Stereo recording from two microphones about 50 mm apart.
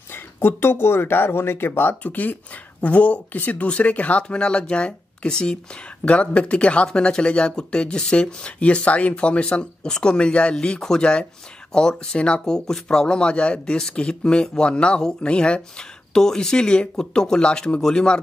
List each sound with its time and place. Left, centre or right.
0.1 s speech: left; by 18.2 s centre